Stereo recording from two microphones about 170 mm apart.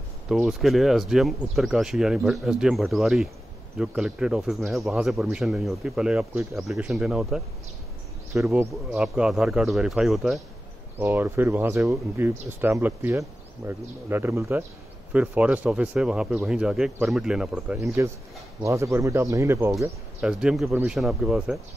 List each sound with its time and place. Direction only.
0.3 s speech: centre (ahead or behind)
11.0 s speech: 10° right (ahead or behind)